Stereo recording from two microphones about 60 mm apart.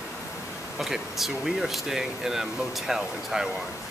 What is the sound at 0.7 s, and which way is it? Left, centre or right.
Speech, centre.